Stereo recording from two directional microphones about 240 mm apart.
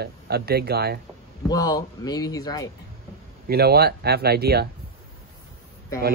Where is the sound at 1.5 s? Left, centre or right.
Centre.